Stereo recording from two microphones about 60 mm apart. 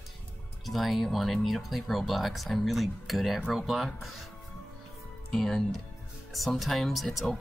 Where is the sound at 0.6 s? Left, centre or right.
Centre.